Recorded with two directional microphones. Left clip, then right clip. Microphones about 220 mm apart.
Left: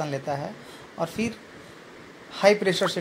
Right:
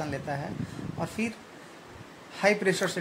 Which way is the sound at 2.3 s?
20° left (ahead or behind).